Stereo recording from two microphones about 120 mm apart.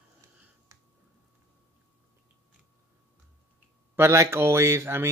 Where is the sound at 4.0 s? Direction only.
25° right (ahead or behind).